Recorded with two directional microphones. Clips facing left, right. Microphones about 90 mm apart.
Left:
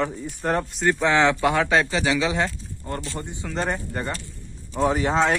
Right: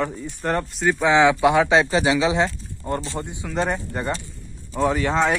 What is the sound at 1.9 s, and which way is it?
Speech, 30° right (ahead or behind).